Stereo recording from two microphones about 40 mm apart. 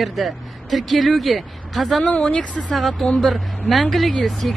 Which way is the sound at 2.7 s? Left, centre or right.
Centre.